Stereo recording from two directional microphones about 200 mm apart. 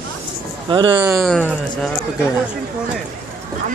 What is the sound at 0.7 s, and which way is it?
Speech, 20° right (ahead or behind).